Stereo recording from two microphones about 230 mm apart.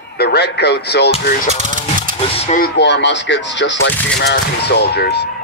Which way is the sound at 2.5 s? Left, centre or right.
Left.